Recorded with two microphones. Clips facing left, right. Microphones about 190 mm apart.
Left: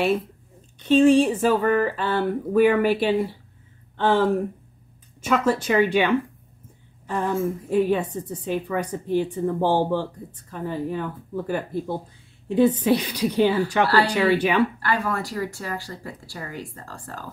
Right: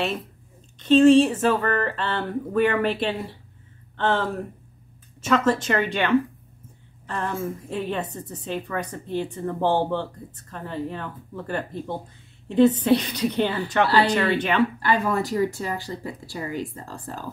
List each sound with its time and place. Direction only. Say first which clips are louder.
0.7 s a woman's voice: right 1 dB; 10° left (ahead or behind)
14.8 s speech: right 3 dB; 20° right (ahead or behind)